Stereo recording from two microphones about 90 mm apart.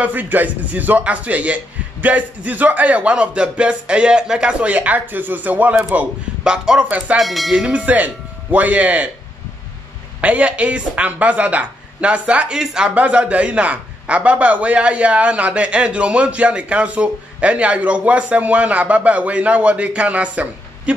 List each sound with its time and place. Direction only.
0.0 s speech: 20° right (ahead or behind)
7.2 s speech: centre (ahead or behind)
7.5 s speech: 15° right (ahead or behind)
10.2 s speech: 15° right (ahead or behind)